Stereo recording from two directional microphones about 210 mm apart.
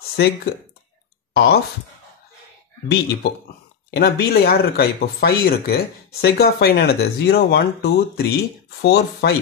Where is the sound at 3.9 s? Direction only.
50° left (ahead or behind).